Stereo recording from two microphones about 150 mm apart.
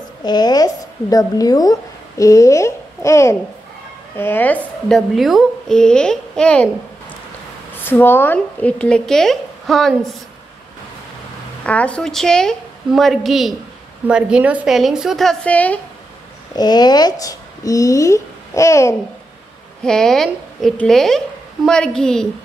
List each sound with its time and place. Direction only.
0.2 s a woman's voice: 30° left (ahead or behind); by 6.7 s 5° left (ahead or behind)
7.8 s speech: 15° left (ahead or behind)
11.6 s a woman's voice: 10° left (ahead or behind)
16.5 s speech: 25° left (ahead or behind)
19.8 s a woman's voice: 5° left (ahead or behind)